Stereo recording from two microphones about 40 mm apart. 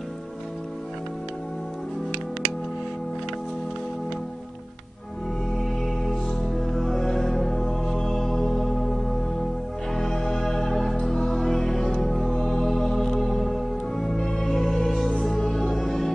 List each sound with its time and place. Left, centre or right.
6.0 s music: centre; by 15.6 s left
15.6 s music: centre